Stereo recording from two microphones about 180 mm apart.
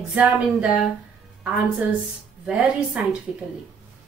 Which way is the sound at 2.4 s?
5° right (ahead or behind).